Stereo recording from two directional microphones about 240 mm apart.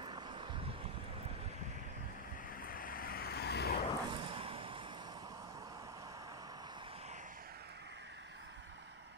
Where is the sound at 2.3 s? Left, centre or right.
Left.